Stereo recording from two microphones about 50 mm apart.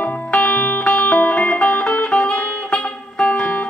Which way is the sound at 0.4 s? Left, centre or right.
Left.